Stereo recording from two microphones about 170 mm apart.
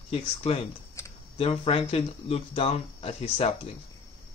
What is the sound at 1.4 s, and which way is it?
Speech, 35° left (ahead or behind).